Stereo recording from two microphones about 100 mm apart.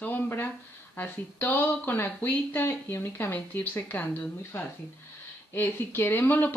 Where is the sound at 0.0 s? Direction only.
20° left (ahead or behind).